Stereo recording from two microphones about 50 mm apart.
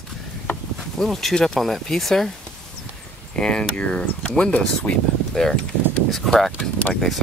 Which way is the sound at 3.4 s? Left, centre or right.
Centre.